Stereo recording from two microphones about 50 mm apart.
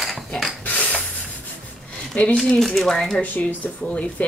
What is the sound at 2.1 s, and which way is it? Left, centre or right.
Speech, left.